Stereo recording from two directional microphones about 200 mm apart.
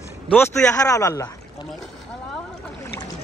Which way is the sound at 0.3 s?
10° left (ahead or behind).